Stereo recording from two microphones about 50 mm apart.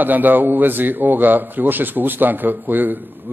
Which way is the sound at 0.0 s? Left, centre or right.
Right.